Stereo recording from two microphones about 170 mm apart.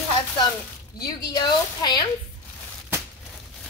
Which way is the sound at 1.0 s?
20° left (ahead or behind).